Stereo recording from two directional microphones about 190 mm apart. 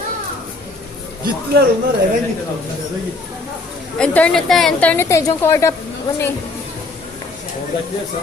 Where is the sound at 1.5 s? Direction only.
55° right (ahead or behind).